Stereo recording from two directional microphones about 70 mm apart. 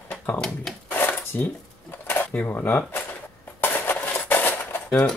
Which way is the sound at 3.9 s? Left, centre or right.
Left.